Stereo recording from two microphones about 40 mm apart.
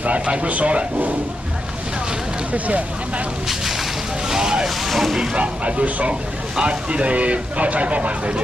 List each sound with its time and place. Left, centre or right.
0.0 s speech: right
4.3 s vehicle: centre
4.6 s vehicle: centre
5.3 s speech: right